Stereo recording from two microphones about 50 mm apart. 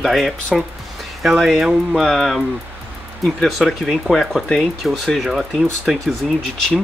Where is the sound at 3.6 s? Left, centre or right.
Centre.